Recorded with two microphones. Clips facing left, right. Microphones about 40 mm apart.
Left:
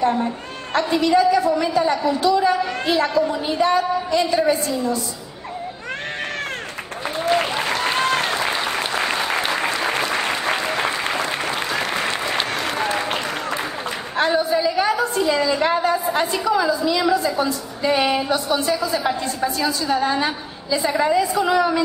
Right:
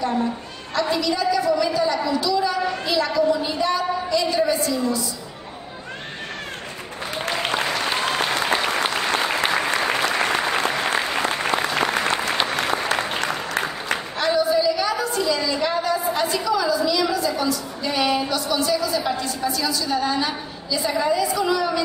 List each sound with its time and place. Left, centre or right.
0.7 s a woman's voice: left
11.2 s applause: right
14.1 s a woman's voice: left